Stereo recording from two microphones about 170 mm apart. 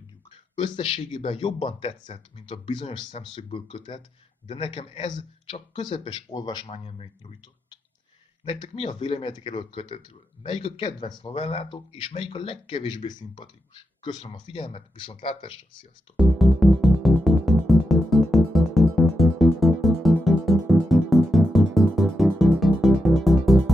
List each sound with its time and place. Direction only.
0.6 s speech: 30° left (ahead or behind)
8.6 s speech: 35° left (ahead or behind)
16.2 s music: centre (ahead or behind)